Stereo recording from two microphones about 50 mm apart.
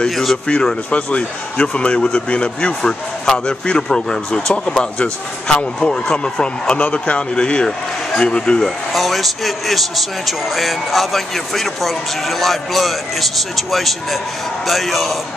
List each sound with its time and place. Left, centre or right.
0.1 s a man's voice: centre
0.5 s speech: centre
8.6 s a man's voice: centre